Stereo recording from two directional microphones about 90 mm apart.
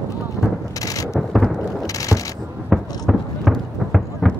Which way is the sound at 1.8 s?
40° left (ahead or behind).